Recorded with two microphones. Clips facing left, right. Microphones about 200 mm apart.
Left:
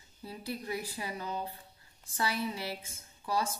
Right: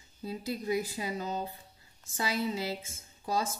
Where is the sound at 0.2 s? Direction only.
20° right (ahead or behind).